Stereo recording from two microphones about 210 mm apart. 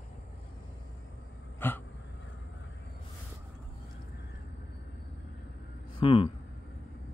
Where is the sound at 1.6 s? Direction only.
10° left (ahead or behind).